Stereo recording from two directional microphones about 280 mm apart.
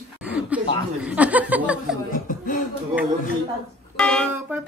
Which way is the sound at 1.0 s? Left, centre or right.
Centre.